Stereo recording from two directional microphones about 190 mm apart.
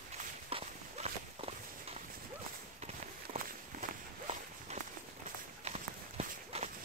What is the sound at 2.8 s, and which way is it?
Walk, 40° right (ahead or behind).